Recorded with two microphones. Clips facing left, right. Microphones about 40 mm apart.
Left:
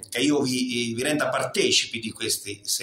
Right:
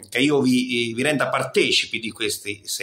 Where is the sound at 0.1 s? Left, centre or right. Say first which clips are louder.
Right 5 dB; right.